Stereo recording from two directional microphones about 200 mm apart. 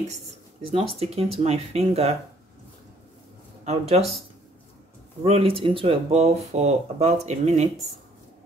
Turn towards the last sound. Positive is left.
turn(degrees=-35)  # may be behind; listen again after turning